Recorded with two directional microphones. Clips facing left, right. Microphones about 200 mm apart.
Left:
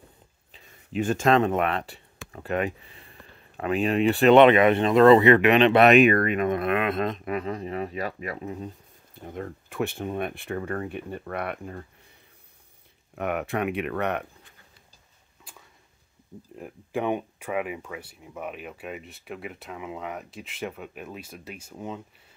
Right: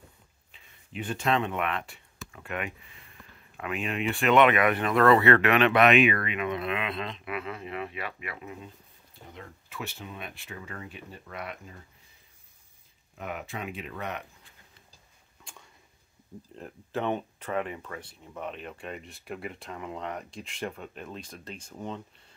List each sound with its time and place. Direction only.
0.5 s speech: 40° left (ahead or behind); by 5.9 s 25° left (ahead or behind)
5.9 s speech: 45° left (ahead or behind)
9.3 s speech: 50° left (ahead or behind)
13.1 s speech: 65° left (ahead or behind)
15.4 s a sound: 5° left (ahead or behind)
16.5 s speech: 10° left (ahead or behind)